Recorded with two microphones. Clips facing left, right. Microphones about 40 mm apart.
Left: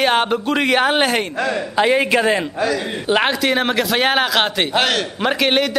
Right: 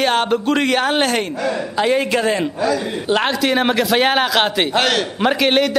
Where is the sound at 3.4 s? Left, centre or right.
Centre.